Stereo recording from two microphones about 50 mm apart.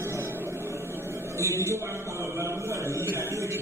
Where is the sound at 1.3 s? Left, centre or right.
Right.